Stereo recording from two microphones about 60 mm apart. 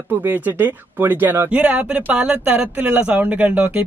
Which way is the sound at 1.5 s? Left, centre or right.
Right.